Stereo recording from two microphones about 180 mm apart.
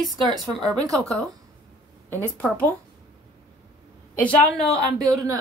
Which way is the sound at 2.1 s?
10° left (ahead or behind).